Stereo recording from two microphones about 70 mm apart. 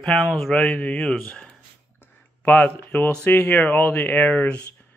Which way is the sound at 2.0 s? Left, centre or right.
Left.